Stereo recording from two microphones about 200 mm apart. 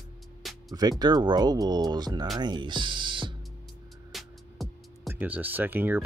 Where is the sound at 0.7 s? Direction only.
20° right (ahead or behind).